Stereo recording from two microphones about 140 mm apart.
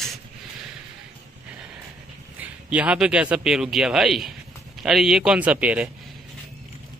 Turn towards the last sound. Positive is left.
turn(degrees=-10)  # may be behind; listen again after turning